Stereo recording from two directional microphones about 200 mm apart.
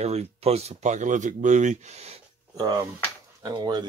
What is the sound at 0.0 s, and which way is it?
Speech, 30° right (ahead or behind).